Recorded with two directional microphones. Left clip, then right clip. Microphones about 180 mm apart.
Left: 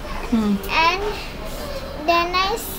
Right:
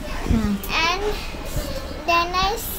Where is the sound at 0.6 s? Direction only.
10° left (ahead or behind).